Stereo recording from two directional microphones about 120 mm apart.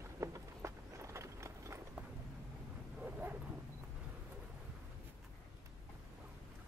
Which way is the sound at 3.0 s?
15° right (ahead or behind).